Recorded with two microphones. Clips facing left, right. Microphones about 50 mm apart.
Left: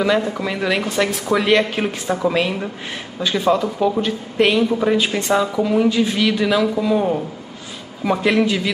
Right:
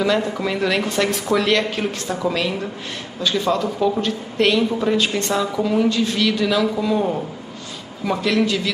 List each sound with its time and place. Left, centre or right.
0.0 s speech: centre
8.0 s speech: centre